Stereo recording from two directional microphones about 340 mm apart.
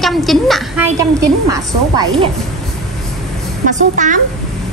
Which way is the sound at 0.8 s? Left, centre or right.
Right.